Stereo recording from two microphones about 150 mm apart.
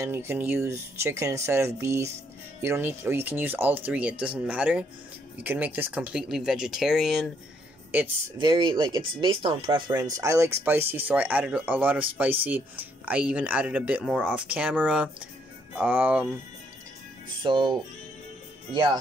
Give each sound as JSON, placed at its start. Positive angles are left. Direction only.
{"t": 0.0, "sound": "speech", "side_deg": -15}
{"t": 8.4, "sound": "speech", "side_deg": -30}
{"t": 17.4, "sound": "speech", "side_deg": -30}